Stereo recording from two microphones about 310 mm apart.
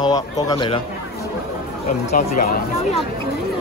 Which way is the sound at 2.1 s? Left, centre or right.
Left.